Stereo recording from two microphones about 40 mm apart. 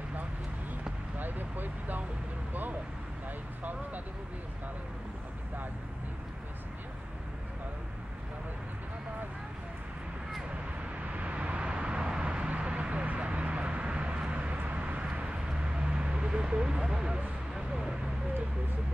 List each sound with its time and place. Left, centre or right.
1.1 s vehicle: right
11.1 s vehicle: right
14.3 s vehicle: right
15.5 s a sound: right
17.6 s vehicle: centre